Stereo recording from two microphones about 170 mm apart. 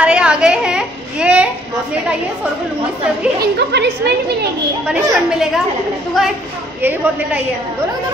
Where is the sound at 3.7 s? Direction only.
90° right.